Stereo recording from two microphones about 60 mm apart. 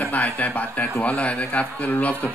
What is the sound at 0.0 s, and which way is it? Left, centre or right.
A man's voice, left.